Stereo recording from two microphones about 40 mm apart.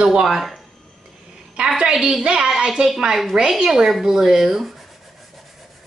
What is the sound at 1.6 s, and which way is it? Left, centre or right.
Speech, right.